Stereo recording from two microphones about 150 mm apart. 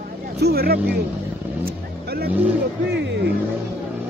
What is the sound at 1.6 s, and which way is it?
Vehicle, 90° right.